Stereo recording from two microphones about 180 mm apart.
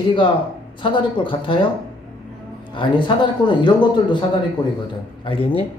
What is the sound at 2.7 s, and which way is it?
Speech, 25° left (ahead or behind).